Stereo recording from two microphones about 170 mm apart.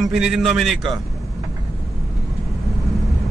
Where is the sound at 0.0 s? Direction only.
5° right (ahead or behind).